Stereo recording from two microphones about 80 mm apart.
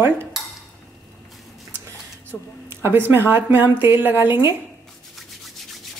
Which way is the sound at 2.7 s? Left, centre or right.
Right.